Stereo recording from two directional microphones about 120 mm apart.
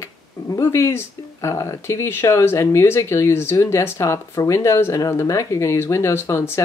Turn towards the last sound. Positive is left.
turn(degrees=20)  # may be behind; listen again after turning